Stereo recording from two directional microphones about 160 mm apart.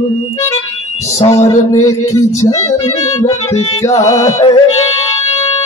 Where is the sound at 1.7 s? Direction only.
20° left (ahead or behind).